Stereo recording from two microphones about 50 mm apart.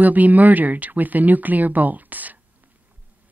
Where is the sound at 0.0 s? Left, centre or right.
Right.